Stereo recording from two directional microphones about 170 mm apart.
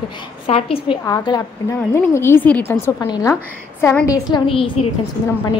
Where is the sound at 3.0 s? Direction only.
25° left (ahead or behind).